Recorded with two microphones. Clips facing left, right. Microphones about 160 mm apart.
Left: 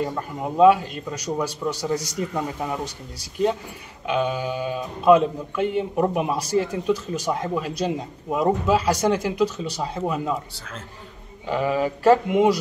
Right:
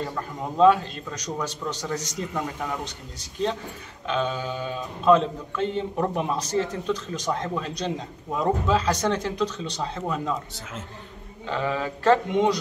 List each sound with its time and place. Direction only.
0.0 s speech: 10° left (ahead or behind)
11.4 s speech: 10° left (ahead or behind)